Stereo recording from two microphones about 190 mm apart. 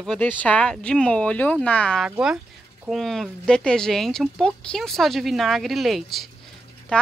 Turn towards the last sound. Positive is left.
turn(degrees=5)  # may be behind; listen again after turning